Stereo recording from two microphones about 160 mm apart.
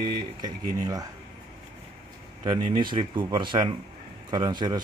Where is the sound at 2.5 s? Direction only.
30° right (ahead or behind).